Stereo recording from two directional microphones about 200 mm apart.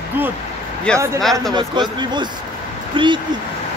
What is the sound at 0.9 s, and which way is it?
Speech, 15° right (ahead or behind).